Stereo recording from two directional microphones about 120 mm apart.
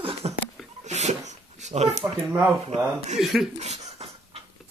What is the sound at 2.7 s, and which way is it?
Speech, 65° right (ahead or behind).